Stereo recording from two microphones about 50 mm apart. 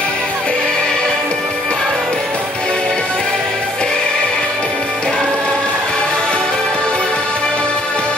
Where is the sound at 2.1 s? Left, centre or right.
Centre.